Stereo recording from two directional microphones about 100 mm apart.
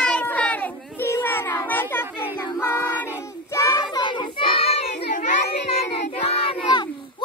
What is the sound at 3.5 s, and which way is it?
Child singing, 40° left (ahead or behind).